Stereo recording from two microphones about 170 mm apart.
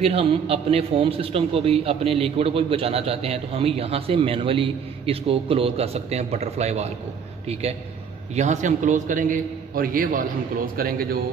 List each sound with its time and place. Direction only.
0.0 s a man's voice: 35° right (ahead or behind)
8.4 s a man's voice: 45° right (ahead or behind); by 11.1 s 60° right (ahead or behind)